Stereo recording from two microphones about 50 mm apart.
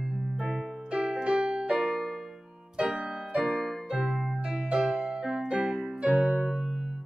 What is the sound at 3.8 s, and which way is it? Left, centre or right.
Music, centre.